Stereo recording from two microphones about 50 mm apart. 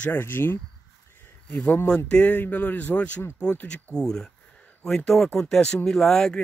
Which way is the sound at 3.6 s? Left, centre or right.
Centre.